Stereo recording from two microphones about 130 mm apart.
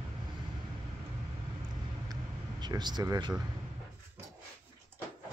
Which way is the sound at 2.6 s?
35° right (ahead or behind).